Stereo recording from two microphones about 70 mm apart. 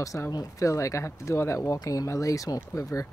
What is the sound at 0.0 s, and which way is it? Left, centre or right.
Speech, left.